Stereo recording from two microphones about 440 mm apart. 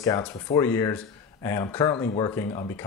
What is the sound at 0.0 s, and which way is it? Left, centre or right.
Speech, centre.